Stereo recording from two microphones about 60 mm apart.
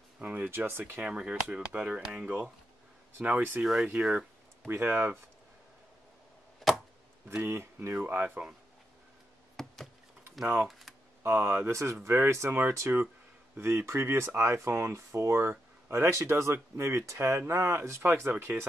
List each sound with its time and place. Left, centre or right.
0.2 s speech: right
0.5 s speech: right
1.0 s speech: centre
3.2 s speech: right
3.8 s speech: right
4.6 s speech: right
6.6 s chop: centre
7.4 s speech: right
9.6 s a sound: centre
11.2 s speech: right